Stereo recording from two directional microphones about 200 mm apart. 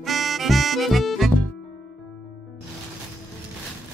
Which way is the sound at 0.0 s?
Centre (ahead or behind).